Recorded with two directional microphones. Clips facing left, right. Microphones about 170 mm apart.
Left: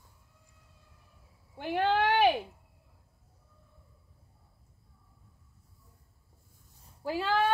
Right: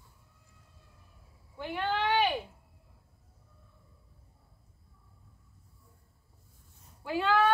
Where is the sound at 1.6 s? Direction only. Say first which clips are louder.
Left 5 dB; 70° left (ahead or behind).